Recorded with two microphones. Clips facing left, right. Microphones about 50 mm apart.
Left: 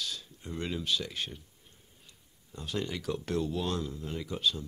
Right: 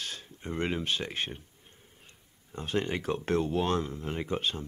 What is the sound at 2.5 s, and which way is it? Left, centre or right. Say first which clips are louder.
Speech: right 4 dB; right.